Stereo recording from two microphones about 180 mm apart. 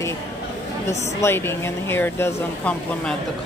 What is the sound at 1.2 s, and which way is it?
Speech, 15° left (ahead or behind).